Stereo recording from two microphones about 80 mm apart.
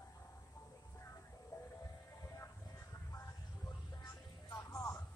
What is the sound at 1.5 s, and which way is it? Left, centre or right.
Music, left.